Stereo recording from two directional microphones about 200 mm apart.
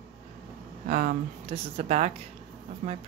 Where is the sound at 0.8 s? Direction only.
40° right (ahead or behind).